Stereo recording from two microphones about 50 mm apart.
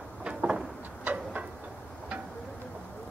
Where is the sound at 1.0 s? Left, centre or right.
Right.